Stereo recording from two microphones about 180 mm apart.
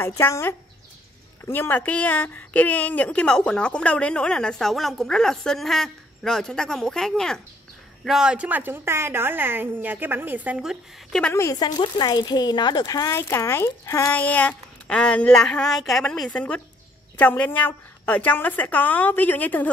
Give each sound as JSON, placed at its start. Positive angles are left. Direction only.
{"t": 0.0, "sound": "a woman's voice", "side_deg": 15}
{"t": 11.3, "sound": "speech", "side_deg": 20}